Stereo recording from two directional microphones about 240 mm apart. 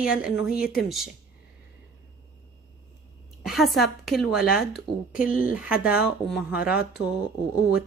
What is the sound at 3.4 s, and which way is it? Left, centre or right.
A woman's voice, centre.